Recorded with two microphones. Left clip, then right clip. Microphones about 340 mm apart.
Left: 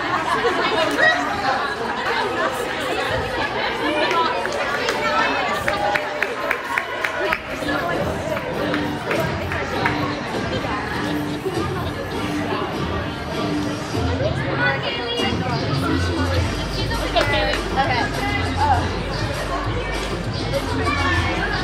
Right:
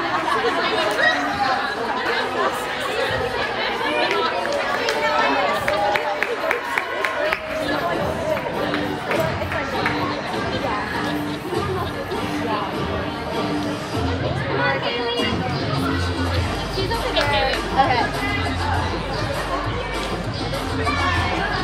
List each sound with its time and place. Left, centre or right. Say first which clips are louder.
0.7 s chatter: left 3 dB; centre
17.7 s music: right 3 dB; right